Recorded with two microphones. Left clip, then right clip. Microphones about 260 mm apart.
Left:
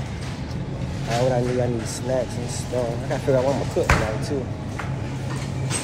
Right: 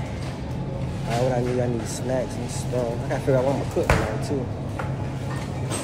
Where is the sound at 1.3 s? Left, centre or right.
Centre.